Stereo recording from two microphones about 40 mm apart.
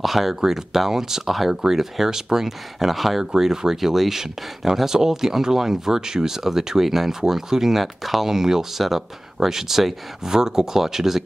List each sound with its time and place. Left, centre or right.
0.0 s speech: centre